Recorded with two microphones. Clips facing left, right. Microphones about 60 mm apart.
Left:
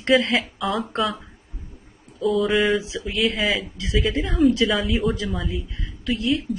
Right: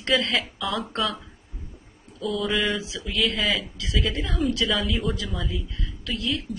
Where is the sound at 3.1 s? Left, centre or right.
Centre.